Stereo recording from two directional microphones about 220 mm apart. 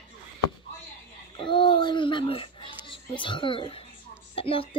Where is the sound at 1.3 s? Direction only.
20° left (ahead or behind).